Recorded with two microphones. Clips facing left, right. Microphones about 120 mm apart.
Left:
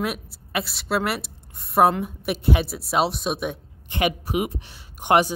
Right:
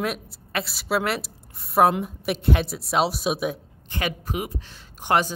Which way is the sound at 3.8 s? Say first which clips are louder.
Left 5 dB; 15° left (ahead or behind).